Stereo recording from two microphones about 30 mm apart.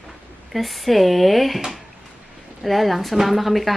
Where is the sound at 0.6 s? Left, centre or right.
Centre.